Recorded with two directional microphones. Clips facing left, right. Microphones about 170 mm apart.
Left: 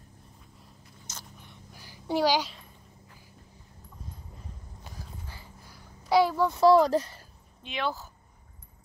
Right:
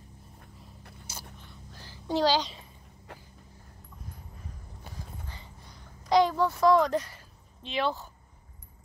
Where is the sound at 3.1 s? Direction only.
75° right (ahead or behind).